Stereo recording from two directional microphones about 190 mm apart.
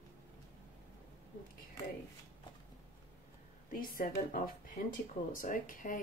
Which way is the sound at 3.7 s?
45° left (ahead or behind).